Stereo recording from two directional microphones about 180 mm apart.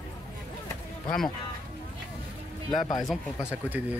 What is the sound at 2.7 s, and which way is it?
Speech, 25° left (ahead or behind).